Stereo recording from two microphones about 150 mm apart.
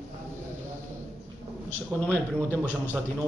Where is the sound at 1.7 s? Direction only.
10° left (ahead or behind).